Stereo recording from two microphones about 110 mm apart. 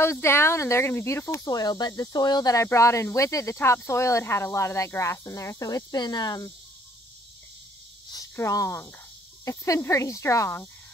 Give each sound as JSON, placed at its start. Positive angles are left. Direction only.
{"t": 0.0, "sound": "speech", "side_deg": 25}
{"t": 8.1, "sound": "speech", "side_deg": 30}